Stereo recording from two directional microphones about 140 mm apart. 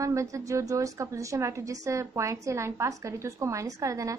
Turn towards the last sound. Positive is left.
turn(degrees=-25)  # may be behind; listen again after turning